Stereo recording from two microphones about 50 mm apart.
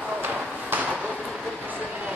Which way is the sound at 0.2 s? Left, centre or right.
Right.